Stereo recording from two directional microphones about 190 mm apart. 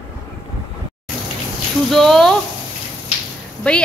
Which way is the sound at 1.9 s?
Centre (ahead or behind).